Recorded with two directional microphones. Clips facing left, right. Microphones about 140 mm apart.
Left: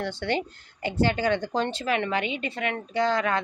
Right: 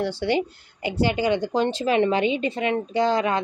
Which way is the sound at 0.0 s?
10° right (ahead or behind).